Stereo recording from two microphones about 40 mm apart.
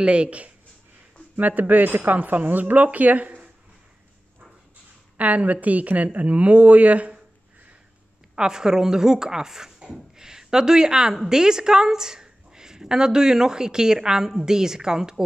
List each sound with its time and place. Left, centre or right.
0.0 s speech: right
1.3 s speech: right
5.1 s a woman's voice: right
8.4 s a woman's voice: centre